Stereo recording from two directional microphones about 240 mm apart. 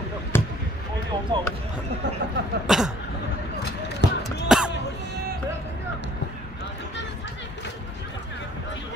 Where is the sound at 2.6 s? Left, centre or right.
Centre.